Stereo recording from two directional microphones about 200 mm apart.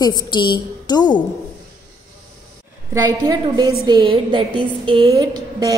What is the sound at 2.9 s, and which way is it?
A woman's voice, 20° right (ahead or behind).